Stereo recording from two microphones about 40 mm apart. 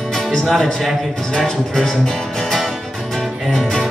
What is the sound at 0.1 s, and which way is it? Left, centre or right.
Music, left.